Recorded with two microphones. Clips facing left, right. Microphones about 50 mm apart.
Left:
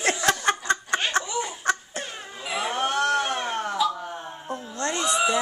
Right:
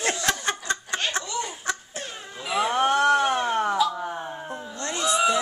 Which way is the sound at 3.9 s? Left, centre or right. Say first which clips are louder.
Right 4 dB; centre.